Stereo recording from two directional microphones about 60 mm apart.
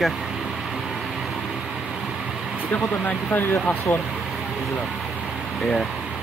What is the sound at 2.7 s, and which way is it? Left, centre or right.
Speech, left.